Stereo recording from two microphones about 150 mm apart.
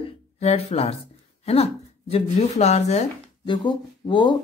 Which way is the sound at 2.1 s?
45° left (ahead or behind).